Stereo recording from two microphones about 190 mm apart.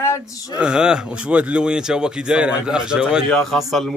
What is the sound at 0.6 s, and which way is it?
Speech, 5° right (ahead or behind).